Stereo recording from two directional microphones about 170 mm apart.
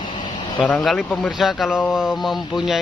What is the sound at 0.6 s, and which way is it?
Speech, 5° left (ahead or behind).